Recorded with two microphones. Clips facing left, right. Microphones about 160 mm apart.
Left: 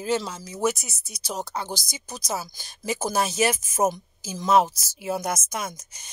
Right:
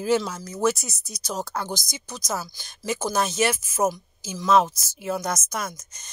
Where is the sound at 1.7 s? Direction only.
30° left (ahead or behind).